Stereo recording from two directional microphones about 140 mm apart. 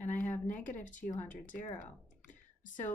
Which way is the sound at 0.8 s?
65° left (ahead or behind).